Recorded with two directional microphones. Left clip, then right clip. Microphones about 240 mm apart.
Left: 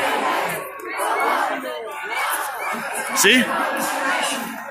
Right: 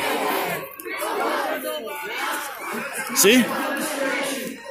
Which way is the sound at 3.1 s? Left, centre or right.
Centre.